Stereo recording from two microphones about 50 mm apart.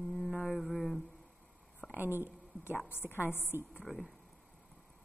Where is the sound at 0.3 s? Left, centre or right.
Centre.